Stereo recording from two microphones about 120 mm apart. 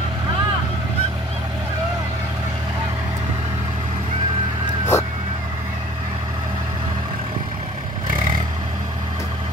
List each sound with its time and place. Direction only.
4.9 s vehicle: 20° left (ahead or behind)